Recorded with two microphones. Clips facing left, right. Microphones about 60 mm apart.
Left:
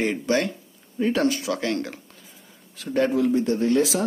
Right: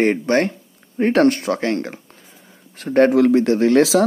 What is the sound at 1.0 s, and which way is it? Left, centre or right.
Speech, right.